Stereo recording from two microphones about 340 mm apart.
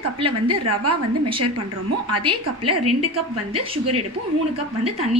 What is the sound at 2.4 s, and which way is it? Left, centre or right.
Speech, right.